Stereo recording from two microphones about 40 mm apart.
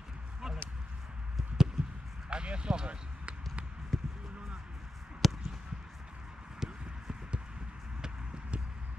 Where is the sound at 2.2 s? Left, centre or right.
Right.